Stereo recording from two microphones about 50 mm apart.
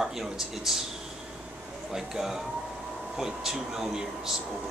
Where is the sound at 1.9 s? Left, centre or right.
Centre.